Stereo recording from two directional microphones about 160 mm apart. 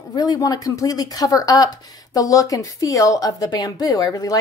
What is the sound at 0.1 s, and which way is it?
Speech, 25° left (ahead or behind).